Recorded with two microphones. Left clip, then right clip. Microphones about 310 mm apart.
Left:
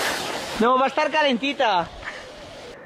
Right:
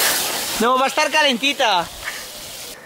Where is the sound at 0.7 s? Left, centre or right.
Centre.